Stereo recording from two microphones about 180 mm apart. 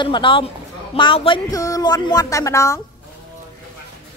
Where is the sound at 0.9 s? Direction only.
30° left (ahead or behind).